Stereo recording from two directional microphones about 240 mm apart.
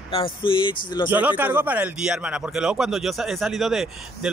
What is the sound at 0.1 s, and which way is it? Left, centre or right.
Speech, left.